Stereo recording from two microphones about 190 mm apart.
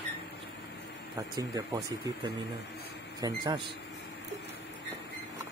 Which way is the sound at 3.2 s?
20° right (ahead or behind).